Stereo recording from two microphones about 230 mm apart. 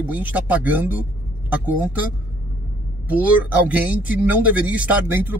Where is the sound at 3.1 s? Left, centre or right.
Centre.